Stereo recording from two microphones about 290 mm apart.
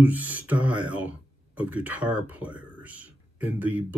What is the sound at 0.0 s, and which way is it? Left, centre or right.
Speech, centre.